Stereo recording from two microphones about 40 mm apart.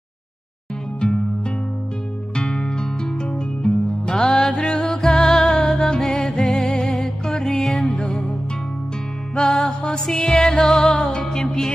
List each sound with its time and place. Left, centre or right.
2.3 s music: centre
9.3 s music: centre
11.1 s music: left